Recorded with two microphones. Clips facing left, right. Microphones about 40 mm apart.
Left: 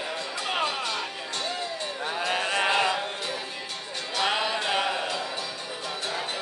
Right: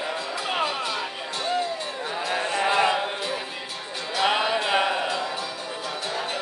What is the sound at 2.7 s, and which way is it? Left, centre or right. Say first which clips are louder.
Music: right 3 dB; centre.